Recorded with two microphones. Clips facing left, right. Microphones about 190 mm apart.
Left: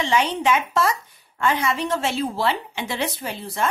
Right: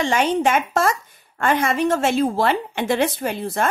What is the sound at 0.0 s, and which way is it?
A woman's voice, 50° right (ahead or behind).